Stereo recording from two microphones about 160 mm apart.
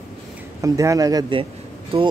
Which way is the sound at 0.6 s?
20° right (ahead or behind).